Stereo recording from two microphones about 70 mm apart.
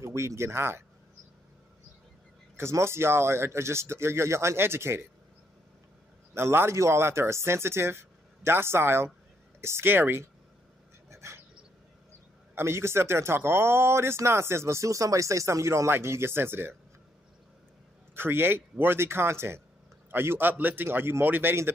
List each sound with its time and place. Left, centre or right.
0.0 s speech: right
2.5 s speech: right
6.3 s speech: right
11.1 s dog: right
12.5 s speech: right
18.1 s speech: right